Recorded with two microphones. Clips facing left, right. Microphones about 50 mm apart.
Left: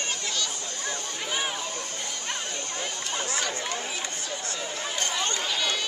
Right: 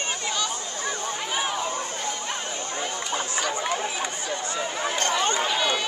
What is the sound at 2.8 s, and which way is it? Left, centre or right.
Chatter, centre.